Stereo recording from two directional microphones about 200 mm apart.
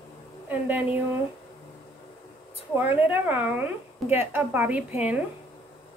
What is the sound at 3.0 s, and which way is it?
Speech, 10° right (ahead or behind).